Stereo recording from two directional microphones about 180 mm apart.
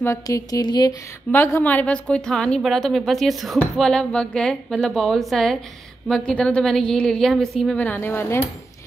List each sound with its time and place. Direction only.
0.0 s mantra: 15° left (ahead or behind)
1.3 s a woman's voice: 10° left (ahead or behind)